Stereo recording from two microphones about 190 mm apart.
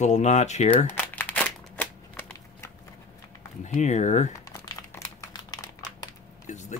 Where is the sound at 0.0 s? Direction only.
40° left (ahead or behind).